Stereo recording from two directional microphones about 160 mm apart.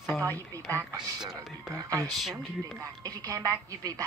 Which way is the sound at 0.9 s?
5° right (ahead or behind).